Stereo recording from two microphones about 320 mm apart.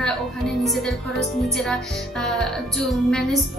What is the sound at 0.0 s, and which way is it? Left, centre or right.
Music, centre.